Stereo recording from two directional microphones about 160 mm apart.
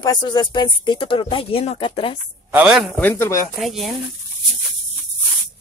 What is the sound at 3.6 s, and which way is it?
Speech, centre (ahead or behind).